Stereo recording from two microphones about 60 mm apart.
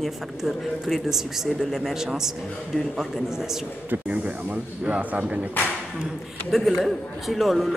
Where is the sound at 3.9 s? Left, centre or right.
Right.